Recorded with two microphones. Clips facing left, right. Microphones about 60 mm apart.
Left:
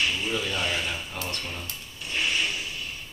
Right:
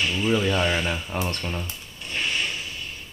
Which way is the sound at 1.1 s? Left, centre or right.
Right.